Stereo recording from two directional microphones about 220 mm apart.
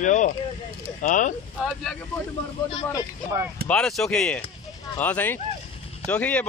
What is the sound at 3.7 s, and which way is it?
Speech, 5° left (ahead or behind).